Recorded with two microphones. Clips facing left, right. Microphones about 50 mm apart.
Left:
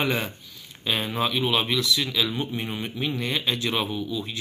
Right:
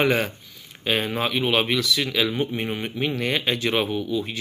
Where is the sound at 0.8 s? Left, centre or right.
Right.